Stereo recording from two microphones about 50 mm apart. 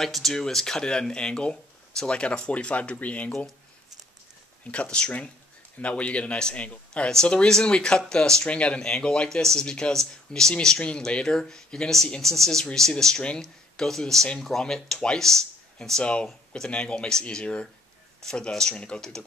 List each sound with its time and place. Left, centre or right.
0.0 s speech: centre; by 3.3 s left
4.6 s speech: centre
16.0 s speech: left